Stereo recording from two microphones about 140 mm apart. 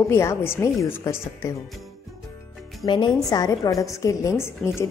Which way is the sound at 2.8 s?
35° left (ahead or behind).